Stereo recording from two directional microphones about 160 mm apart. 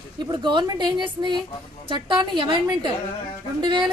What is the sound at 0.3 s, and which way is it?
Speech, 30° right (ahead or behind).